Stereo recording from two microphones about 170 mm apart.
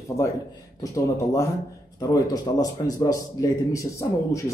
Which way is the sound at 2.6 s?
20° left (ahead or behind).